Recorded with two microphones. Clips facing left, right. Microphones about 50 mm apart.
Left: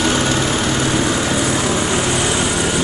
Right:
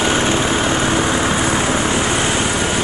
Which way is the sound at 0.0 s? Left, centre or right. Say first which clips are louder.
Right 1 dB; right.